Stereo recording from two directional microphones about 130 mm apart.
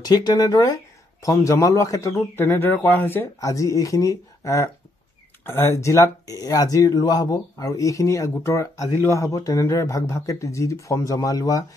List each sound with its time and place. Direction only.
0.0 s a man's voice: 30° left (ahead or behind)